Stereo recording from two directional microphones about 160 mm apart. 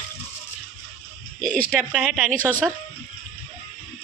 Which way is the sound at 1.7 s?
5° right (ahead or behind).